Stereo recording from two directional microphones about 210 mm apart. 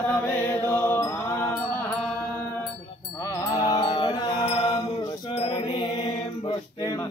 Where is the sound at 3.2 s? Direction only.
15° left (ahead or behind).